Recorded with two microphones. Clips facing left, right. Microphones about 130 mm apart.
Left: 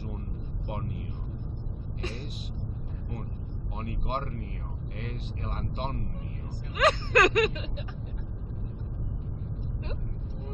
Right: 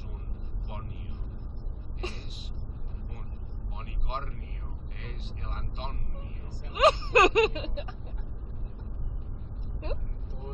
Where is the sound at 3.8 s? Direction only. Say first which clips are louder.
Left 5 dB; 50° left (ahead or behind).